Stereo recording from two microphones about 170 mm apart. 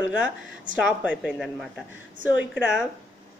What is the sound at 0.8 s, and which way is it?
A woman's voice, 5° right (ahead or behind).